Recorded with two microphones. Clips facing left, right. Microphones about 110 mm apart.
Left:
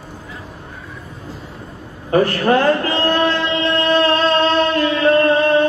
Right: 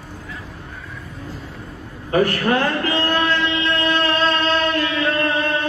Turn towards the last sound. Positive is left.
turn(degrees=35)  # may be behind; listen again after turning